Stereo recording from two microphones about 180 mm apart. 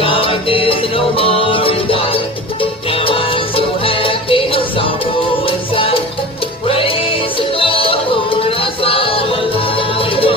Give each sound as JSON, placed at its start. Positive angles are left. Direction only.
{"t": 0.0, "sound": "music", "side_deg": 30}
{"t": 6.7, "sound": "music", "side_deg": 30}